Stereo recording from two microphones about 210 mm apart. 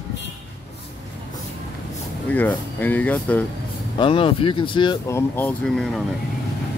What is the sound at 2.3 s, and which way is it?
Speech, 10° left (ahead or behind).